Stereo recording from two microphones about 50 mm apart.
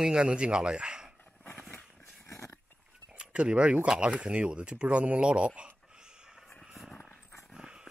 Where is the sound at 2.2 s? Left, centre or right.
Left.